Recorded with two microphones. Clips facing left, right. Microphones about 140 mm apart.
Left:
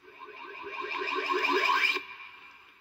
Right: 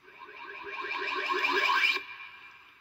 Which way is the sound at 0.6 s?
10° left (ahead or behind).